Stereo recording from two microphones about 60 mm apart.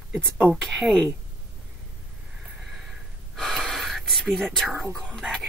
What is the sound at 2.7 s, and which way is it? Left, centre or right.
Gasp, centre.